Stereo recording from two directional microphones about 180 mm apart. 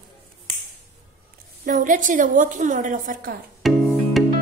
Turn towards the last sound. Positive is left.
turn(degrees=0)  # may be behind; listen again after turning